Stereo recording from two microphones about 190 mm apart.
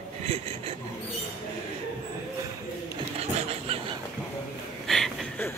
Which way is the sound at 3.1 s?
35° right (ahead or behind).